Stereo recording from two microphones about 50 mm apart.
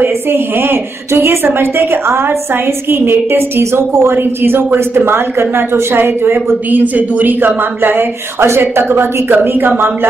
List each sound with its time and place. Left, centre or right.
0.0 s a woman's voice: right